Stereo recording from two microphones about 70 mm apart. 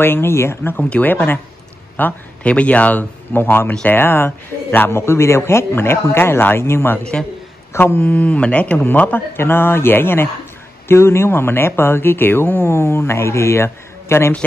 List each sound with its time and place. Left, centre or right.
0.0 s speech: left
0.7 s speech: left